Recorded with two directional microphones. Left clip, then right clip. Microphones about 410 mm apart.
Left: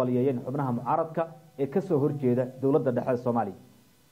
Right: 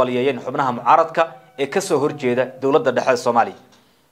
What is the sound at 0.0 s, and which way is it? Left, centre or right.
A man's voice, centre.